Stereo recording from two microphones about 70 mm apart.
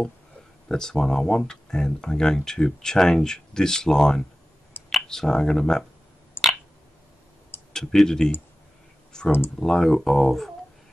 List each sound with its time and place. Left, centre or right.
0.7 s speech: centre
6.4 s a sound: left
7.7 s speech: centre